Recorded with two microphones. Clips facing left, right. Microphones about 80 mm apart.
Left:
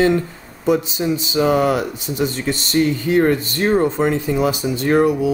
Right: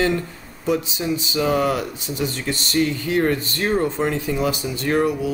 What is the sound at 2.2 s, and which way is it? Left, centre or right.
Speech, left.